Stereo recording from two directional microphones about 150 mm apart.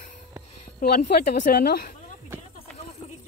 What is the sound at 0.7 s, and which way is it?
A woman's voice, 85° left.